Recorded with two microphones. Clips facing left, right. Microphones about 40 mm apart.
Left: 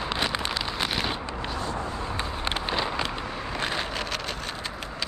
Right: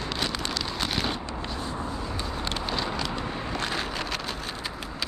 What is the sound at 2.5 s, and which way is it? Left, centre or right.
Vehicle, left.